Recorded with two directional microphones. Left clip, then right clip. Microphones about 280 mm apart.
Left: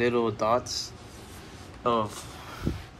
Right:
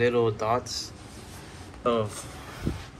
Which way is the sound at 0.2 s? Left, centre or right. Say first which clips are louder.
Even; left.